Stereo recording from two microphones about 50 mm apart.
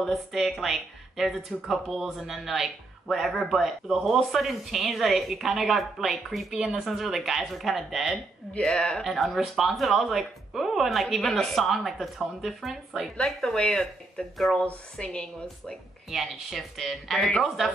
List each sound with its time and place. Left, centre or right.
0.0 s speech: centre
8.5 s speech: centre
9.0 s speech: centre
13.2 s a woman's voice: centre
16.1 s speech: centre